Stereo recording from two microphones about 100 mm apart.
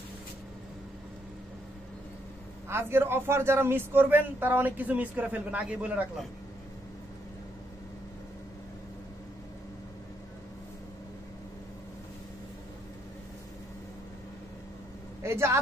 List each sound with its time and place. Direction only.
2.7 s a man's voice: 25° right (ahead or behind)
15.2 s speech: 25° right (ahead or behind)